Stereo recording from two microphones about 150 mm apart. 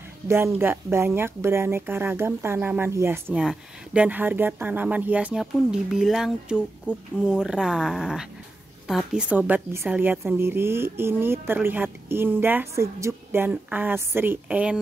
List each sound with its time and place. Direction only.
0.3 s a woman's voice: 15° right (ahead or behind)